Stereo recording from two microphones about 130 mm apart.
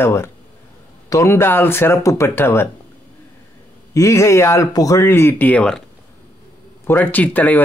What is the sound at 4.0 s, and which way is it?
Speech, 25° left (ahead or behind).